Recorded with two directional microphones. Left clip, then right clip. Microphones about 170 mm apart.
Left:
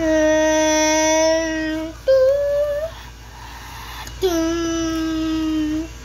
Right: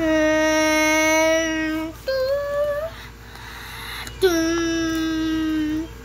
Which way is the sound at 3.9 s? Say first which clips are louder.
Right 1 dB; centre (ahead or behind).